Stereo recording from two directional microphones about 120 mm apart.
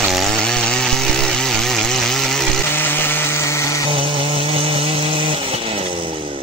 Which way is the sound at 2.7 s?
15° left (ahead or behind).